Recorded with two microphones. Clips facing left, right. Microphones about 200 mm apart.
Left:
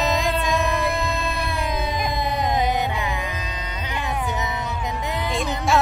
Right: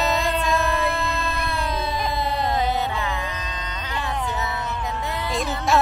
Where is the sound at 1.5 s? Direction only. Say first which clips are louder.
Left 1 dB; 15° left (ahead or behind).